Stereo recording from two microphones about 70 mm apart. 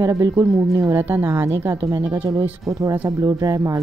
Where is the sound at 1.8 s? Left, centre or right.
Right.